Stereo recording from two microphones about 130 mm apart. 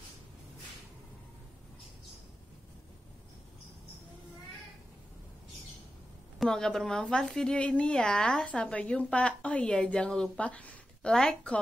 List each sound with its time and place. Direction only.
6.4 s a woman's voice: 5° left (ahead or behind)